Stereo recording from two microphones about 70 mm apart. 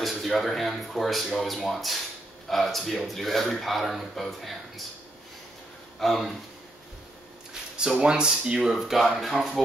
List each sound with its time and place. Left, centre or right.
0.0 s speech: centre
5.9 s speech: centre
7.7 s speech: centre